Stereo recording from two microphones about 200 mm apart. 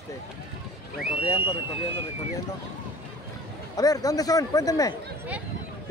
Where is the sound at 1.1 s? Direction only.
20° left (ahead or behind).